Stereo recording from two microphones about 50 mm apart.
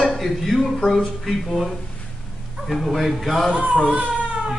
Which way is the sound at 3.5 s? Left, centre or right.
Right.